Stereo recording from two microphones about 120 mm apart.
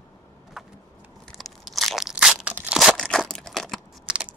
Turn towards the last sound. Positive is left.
turn(degrees=-5)  # may be behind; listen again after turning